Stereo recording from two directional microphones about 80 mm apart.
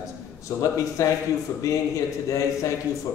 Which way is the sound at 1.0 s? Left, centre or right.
Left.